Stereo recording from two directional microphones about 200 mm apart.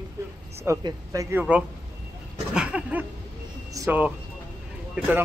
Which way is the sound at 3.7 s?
15° right (ahead or behind).